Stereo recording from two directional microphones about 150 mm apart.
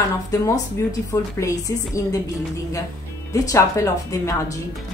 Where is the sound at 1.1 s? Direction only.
20° left (ahead or behind).